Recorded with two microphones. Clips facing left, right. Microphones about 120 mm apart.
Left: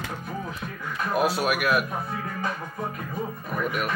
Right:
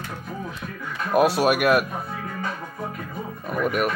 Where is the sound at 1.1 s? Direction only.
70° right (ahead or behind).